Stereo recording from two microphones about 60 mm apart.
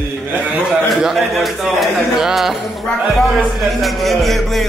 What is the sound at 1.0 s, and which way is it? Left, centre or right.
Music, centre.